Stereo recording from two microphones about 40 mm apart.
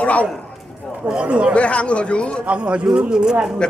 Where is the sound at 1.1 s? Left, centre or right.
Right.